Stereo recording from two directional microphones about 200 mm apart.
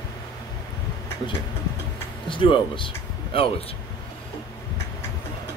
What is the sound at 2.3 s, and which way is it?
Speech, 25° left (ahead or behind).